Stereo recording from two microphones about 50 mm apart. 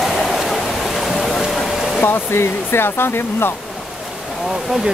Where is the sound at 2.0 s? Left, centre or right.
Left.